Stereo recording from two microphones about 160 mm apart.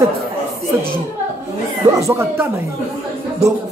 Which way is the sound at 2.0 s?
15° right (ahead or behind).